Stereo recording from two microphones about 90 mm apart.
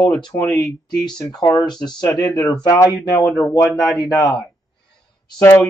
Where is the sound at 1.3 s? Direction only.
40° left (ahead or behind).